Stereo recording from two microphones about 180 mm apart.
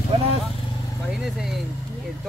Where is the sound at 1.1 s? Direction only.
Centre (ahead or behind).